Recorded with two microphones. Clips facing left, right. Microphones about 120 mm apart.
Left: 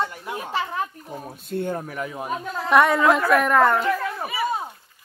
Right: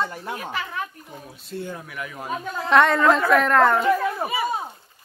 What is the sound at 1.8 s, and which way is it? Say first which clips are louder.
Speech: left 4 dB; 35° left (ahead or behind).